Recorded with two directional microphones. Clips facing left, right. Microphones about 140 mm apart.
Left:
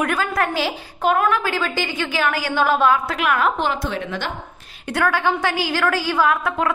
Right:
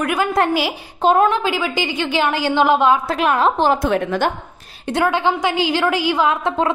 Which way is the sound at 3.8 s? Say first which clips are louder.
Right 8 dB; 50° right (ahead or behind).